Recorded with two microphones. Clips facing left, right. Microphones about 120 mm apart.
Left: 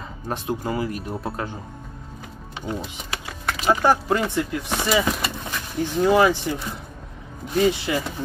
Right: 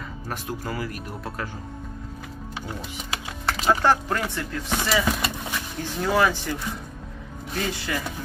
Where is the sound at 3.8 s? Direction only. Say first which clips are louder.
Left 3 dB; 15° left (ahead or behind).